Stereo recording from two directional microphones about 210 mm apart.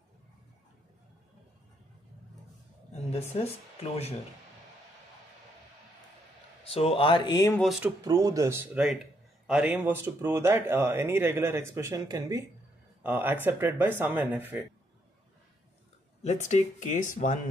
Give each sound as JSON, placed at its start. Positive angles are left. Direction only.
{"t": 2.9, "sound": "a sound", "side_deg": 30}
{"t": 6.7, "sound": "speech", "side_deg": 25}
{"t": 8.0, "sound": "speech", "side_deg": -15}
{"t": 16.2, "sound": "speech", "side_deg": 35}